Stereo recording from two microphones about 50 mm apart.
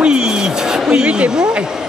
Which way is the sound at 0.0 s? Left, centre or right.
Centre.